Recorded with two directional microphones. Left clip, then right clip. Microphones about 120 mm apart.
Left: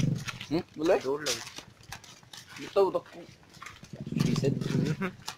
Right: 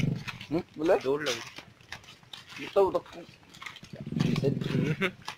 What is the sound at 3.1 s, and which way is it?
Roaring cats, 80° right.